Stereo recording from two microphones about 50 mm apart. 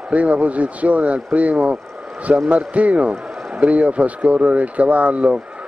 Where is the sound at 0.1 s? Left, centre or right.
Right.